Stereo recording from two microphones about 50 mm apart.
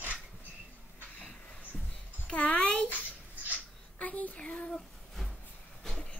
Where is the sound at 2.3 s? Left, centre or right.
Left.